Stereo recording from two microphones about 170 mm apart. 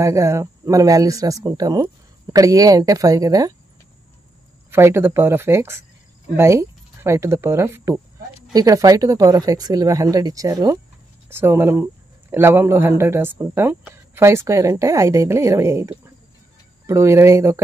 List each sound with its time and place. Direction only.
0.0 s speech: 15° right (ahead or behind)
4.6 s a man's voice: 15° right (ahead or behind)